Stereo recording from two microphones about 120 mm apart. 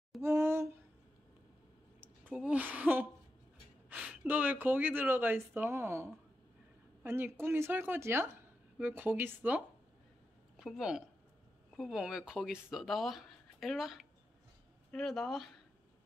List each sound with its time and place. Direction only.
0.2 s a sound: 20° right (ahead or behind)
2.3 s a woman's voice: 10° right (ahead or behind)
10.6 s speech: 5° right (ahead or behind)